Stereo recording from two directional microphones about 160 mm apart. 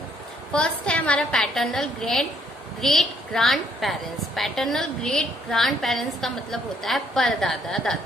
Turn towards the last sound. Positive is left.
turn(degrees=5)  # may be behind; listen again after turning